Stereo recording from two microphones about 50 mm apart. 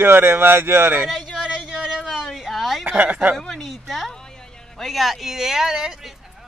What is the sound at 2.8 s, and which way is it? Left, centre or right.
Speech, right.